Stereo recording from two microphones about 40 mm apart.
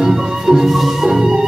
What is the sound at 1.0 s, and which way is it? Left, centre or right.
Music, centre.